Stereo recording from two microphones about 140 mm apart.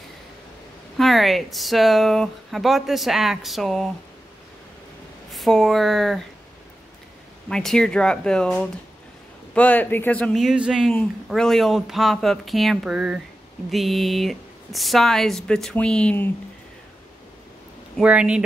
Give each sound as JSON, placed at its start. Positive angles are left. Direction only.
{"t": 0.9, "sound": "speech", "side_deg": 0}
{"t": 5.3, "sound": "speech", "side_deg": 0}
{"t": 7.4, "sound": "speech", "side_deg": 5}
{"t": 18.0, "sound": "speech", "side_deg": -10}